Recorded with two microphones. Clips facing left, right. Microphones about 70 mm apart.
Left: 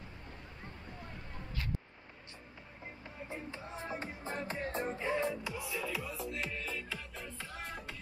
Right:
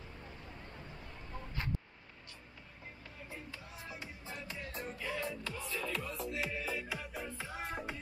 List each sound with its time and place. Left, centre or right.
3.2 s music: left
5.5 s music: centre